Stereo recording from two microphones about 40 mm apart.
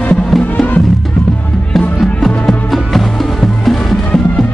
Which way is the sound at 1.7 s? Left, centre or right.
Centre.